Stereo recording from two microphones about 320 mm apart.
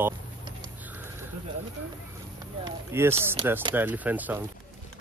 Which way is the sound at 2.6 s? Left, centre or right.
Centre.